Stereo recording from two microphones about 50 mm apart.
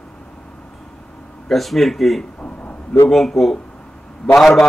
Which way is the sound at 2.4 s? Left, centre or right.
Left.